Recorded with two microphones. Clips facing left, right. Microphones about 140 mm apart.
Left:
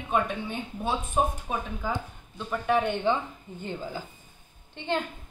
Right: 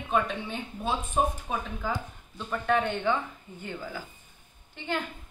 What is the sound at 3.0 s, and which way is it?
A woman's voice, 20° left (ahead or behind).